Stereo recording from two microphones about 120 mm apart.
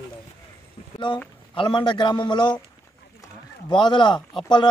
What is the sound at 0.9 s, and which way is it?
A man's voice, 40° left (ahead or behind).